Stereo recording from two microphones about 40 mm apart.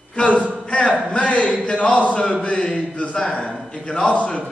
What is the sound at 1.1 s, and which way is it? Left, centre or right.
Speech, left.